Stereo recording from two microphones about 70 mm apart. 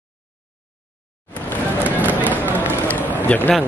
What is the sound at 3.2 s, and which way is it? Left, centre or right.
Speech, left.